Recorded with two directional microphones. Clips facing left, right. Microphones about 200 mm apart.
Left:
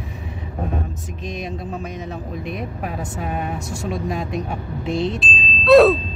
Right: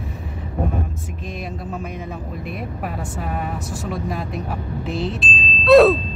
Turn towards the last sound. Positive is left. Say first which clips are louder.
# even
turn(degrees=0)  # may be behind; listen again after turning